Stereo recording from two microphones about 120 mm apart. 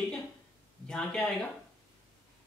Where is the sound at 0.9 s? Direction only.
5° left (ahead or behind).